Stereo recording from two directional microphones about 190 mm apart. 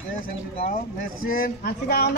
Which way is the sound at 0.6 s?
50° left (ahead or behind).